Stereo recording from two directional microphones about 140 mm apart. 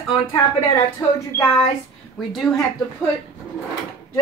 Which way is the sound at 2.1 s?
Centre (ahead or behind).